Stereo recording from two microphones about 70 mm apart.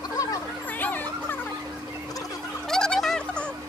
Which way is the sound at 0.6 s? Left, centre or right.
Left.